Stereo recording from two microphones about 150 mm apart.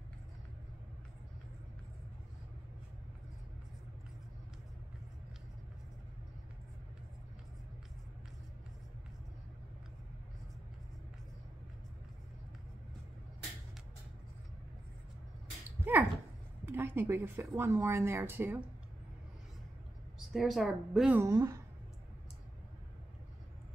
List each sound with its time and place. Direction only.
15.8 s dog: 15° right (ahead or behind)
16.6 s speech: 15° right (ahead or behind)
20.3 s a woman's voice: centre (ahead or behind)
21.2 s a woman's voice: 20° right (ahead or behind)